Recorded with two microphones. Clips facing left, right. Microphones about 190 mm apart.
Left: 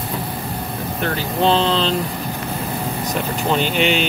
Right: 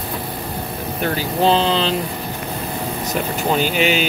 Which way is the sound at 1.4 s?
5° right (ahead or behind).